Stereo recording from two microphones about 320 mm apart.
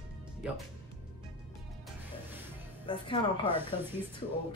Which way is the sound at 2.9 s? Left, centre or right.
Centre.